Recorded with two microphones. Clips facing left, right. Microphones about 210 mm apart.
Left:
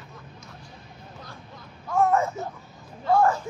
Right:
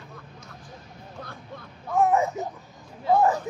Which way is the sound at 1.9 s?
15° right (ahead or behind).